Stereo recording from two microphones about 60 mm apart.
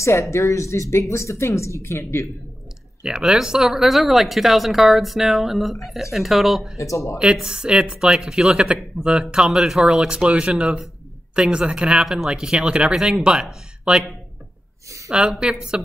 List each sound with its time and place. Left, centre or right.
0.0 s speech: left
3.0 s speech: centre
6.8 s speech: left
7.2 s speech: centre
15.0 s speech: centre